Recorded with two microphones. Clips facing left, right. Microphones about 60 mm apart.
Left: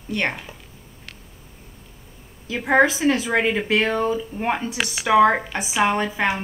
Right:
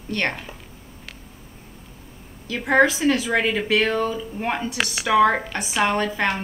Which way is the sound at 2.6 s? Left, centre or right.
Centre.